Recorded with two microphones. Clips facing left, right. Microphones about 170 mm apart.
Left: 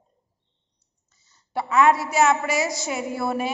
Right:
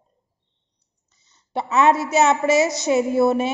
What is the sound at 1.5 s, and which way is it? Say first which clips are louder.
A woman's voice: right 1 dB; 25° right (ahead or behind).